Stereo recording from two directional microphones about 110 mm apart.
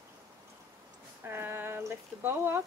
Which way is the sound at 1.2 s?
20° right (ahead or behind).